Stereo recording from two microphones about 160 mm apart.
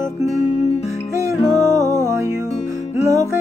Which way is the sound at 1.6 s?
20° right (ahead or behind).